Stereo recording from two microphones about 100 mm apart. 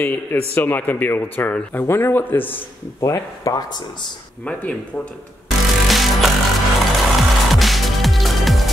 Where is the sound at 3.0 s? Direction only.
35° left (ahead or behind).